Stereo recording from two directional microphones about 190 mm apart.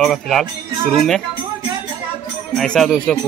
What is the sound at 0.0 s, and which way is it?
Speech, centre (ahead or behind).